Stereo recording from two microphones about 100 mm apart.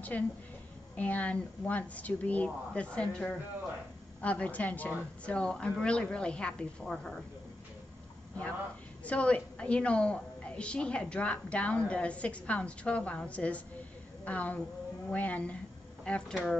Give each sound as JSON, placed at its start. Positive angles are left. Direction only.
{"t": 0.1, "sound": "a woman's voice", "side_deg": 15}
{"t": 9.0, "sound": "a woman's voice", "side_deg": 15}